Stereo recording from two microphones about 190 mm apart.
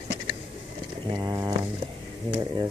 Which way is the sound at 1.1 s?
20° right (ahead or behind).